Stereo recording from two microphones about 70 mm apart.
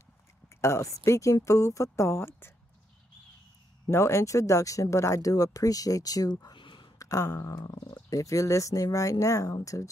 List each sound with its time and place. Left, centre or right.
0.6 s speech: left
3.9 s speech: left
7.0 s speech: left